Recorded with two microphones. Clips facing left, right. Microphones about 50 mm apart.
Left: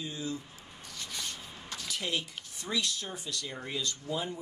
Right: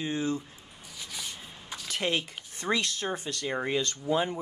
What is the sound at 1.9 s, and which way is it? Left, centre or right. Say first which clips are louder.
Speech: right 5 dB; right.